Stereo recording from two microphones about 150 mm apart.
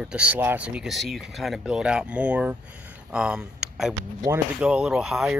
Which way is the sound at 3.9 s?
25° right (ahead or behind).